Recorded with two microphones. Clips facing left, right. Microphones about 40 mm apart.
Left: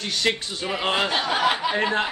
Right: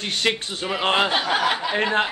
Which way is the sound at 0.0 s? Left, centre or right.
Right.